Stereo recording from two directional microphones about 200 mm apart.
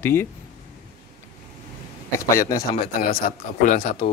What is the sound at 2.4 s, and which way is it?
Speech, 15° left (ahead or behind).